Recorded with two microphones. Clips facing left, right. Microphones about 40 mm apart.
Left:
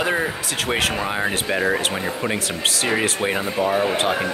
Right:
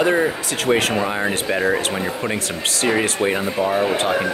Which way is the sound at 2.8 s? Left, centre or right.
Centre.